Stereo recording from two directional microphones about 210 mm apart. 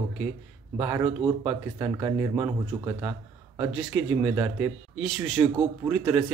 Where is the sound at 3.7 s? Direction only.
5° right (ahead or behind).